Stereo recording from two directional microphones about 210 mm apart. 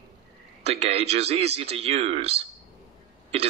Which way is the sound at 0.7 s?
30° right (ahead or behind).